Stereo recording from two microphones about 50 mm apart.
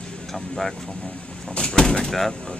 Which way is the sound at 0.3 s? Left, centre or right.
Centre.